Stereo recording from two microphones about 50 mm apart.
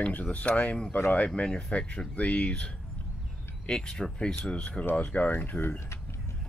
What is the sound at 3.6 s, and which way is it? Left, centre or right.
Speech, centre.